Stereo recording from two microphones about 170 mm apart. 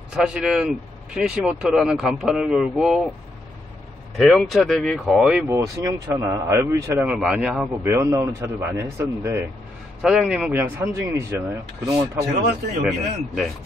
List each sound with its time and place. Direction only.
0.1 s speech: 5° right (ahead or behind)
4.2 s speech: centre (ahead or behind)
5.5 s a man's voice: 15° right (ahead or behind)
7.8 s a man's voice: 15° right (ahead or behind)
10.0 s a man's voice: 5° right (ahead or behind)
12.8 s speech: centre (ahead or behind)